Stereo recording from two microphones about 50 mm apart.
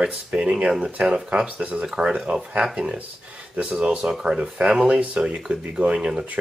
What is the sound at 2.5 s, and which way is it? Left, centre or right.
Speech, centre.